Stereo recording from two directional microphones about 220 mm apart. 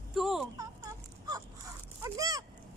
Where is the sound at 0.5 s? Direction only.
15° right (ahead or behind).